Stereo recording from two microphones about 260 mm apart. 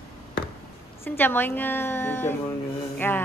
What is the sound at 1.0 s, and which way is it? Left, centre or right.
Speech, centre.